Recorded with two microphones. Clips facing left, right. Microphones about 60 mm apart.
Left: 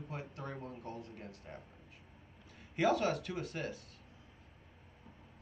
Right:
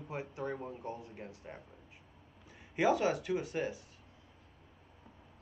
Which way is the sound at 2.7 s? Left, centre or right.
Centre.